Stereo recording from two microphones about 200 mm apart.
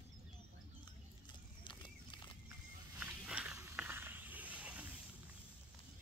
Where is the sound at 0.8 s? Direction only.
25° left (ahead or behind).